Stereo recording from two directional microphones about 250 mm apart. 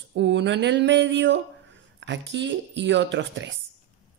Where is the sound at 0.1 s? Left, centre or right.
Right.